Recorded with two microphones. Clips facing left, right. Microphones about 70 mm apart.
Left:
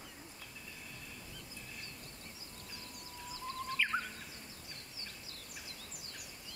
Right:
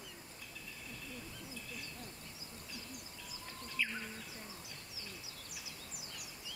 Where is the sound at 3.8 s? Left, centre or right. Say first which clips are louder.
Left 2 dB; left.